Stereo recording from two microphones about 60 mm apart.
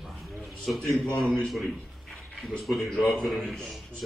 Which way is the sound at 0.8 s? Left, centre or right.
Centre.